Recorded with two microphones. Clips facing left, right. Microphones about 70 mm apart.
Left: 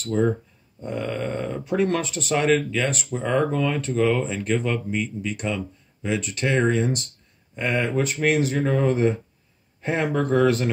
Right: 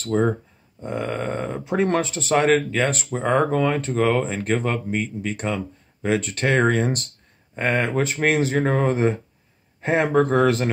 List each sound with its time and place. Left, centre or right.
0.0 s speech: right
0.7 s speech: right
7.5 s speech: right